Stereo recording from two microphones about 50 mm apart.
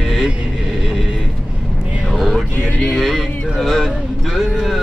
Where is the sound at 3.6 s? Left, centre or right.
Centre.